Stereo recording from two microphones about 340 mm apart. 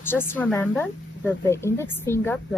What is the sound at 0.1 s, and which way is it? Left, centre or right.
A woman's voice, centre.